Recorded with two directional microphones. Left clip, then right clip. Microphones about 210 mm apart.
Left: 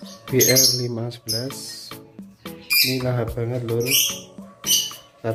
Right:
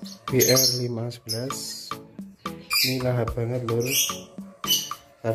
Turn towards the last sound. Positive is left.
turn(degrees=0)  # may be behind; listen again after turning